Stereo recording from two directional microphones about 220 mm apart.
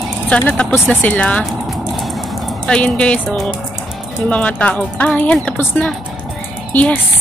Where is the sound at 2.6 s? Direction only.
5° left (ahead or behind).